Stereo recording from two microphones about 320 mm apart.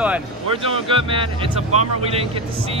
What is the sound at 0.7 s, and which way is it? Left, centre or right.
Speech, centre.